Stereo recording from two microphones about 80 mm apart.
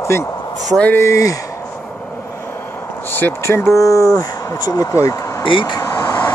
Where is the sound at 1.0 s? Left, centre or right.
Left.